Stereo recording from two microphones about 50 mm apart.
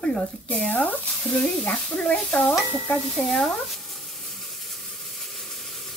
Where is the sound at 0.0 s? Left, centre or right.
Left.